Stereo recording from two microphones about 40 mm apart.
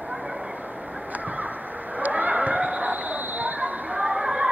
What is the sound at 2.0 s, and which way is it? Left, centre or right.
Basketball bounce, right.